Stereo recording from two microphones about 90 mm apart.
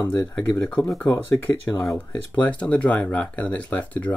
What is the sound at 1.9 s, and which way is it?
Speech, 15° left (ahead or behind).